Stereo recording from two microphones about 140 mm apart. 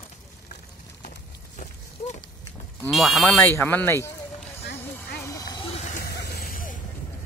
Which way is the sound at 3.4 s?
15° left (ahead or behind).